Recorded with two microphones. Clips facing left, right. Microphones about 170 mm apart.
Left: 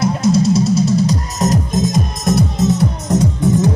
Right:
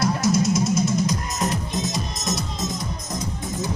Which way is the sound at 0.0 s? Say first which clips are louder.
Left 6 dB; 25° left (ahead or behind).